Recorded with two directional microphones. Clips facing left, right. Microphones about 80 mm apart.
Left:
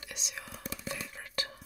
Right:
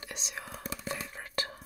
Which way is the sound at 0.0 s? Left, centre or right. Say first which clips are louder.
Right 3 dB; right.